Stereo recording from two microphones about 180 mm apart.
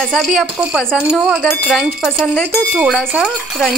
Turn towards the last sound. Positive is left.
turn(degrees=0)  # may be behind; listen again after turning